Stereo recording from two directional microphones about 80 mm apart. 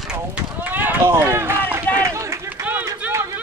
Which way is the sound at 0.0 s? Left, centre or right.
Centre.